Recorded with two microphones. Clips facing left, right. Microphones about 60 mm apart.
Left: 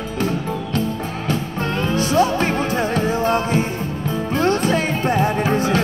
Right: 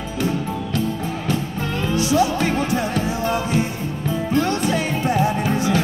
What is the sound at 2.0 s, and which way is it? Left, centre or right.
Music, left.